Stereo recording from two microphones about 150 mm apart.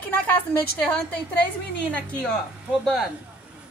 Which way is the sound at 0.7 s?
10° left (ahead or behind).